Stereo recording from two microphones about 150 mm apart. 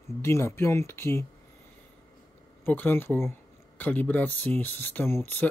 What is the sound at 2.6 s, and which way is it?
Speech, 10° left (ahead or behind).